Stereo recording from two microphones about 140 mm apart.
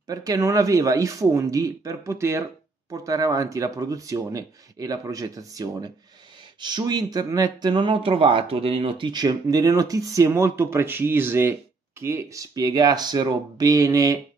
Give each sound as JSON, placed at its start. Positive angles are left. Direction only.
{"t": 0.0, "sound": "speech", "side_deg": -25}